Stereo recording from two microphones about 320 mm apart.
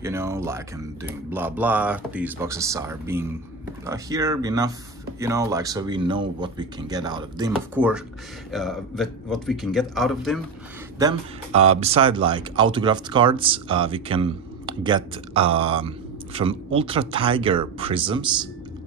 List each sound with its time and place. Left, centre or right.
0.0 s a man's voice: centre
11.0 s speech: centre